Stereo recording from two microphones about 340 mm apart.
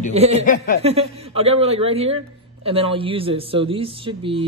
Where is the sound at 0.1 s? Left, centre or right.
Centre.